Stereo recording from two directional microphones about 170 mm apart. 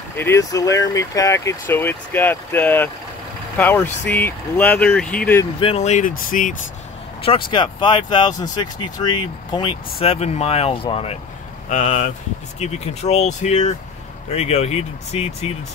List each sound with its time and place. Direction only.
0.2 s speech: 15° left (ahead or behind)
5.6 s speech: 35° left (ahead or behind)
7.2 s vehicle: 35° left (ahead or behind)
7.5 s speech: 25° left (ahead or behind)
11.7 s speech: 45° left (ahead or behind)